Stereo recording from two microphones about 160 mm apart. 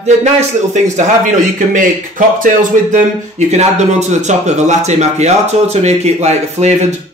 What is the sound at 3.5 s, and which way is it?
Speech, 45° right (ahead or behind).